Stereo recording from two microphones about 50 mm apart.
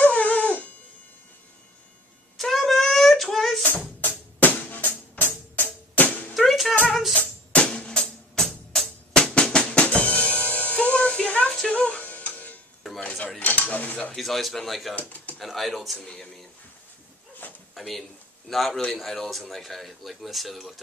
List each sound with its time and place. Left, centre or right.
0.0 s dog: left
2.3 s child singing: centre
4.0 s music: left
6.3 s music: centre
7.6 s drum: centre
11.4 s music: centre
11.7 s music: left
13.4 s cutlery: left
14.1 s speech: centre
15.0 s pigeon: left
15.3 s speech: centre
17.4 s a sound: left
17.7 s speech: centre